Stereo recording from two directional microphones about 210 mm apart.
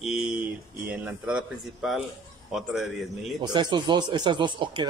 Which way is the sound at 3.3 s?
20° right (ahead or behind).